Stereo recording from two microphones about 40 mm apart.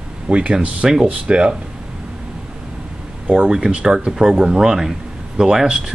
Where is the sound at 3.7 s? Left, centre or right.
Right.